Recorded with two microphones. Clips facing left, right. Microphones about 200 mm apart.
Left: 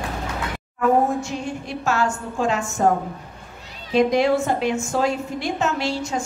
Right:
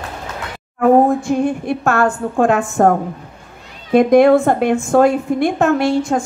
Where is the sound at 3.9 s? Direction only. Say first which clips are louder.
Right 8 dB; 55° right (ahead or behind).